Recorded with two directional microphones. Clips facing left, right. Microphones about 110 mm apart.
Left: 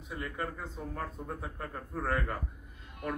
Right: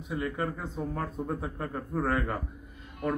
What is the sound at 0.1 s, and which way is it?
Speech, 20° right (ahead or behind).